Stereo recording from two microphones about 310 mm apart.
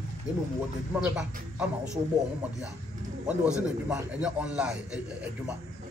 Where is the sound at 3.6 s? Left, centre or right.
Centre.